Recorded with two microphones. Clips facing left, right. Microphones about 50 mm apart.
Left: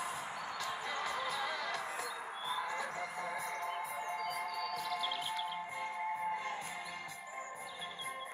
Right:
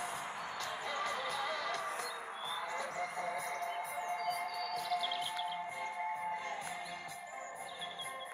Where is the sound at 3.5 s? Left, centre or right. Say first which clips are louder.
Even; left.